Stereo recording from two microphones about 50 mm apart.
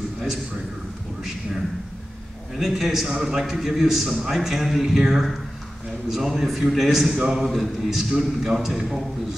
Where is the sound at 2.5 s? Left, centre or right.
Centre.